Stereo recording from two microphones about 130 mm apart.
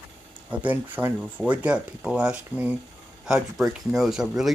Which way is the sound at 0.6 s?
15° right (ahead or behind).